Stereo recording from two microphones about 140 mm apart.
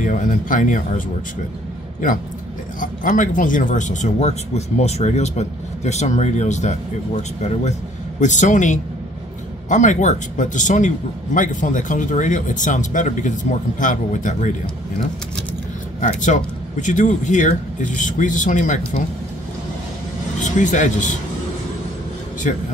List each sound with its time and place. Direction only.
0.0 s speech: 70° left (ahead or behind)
2.8 s speech: 70° left (ahead or behind)
8.2 s speech: 60° left (ahead or behind)
16.0 s speech: 65° left (ahead or behind)
20.3 s speech: 60° left (ahead or behind)